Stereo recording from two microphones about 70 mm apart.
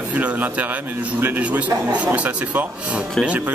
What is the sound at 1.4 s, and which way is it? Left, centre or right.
Speech, centre.